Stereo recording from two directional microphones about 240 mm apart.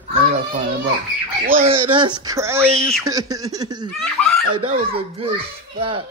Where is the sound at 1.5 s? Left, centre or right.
Right.